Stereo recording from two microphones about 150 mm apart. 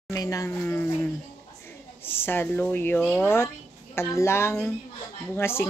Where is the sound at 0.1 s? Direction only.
20° left (ahead or behind).